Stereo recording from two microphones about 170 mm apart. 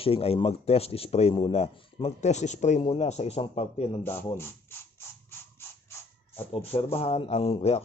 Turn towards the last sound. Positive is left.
turn(degrees=35)  # may be behind; listen again after turning